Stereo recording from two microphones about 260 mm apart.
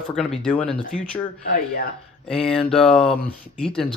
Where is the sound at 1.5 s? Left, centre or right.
Left.